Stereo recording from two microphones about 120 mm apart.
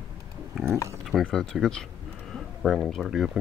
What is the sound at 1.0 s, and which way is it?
Speech, centre (ahead or behind).